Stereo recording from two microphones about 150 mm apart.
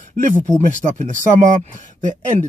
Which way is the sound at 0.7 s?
55° right (ahead or behind).